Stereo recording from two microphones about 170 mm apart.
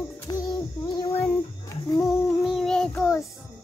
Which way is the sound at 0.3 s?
25° left (ahead or behind).